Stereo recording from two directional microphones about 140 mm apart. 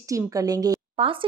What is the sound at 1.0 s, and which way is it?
Speech, 40° right (ahead or behind).